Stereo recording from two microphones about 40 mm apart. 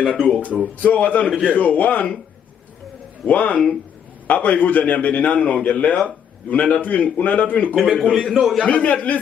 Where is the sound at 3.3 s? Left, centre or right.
Left.